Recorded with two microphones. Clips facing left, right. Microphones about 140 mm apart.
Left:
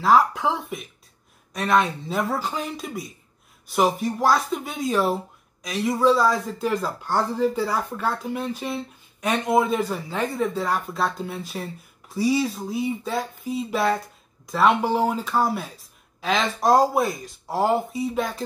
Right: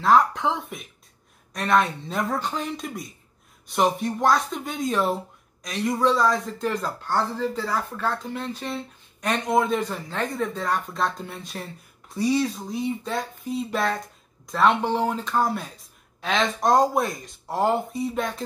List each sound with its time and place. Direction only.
0.0 s speech: 5° left (ahead or behind)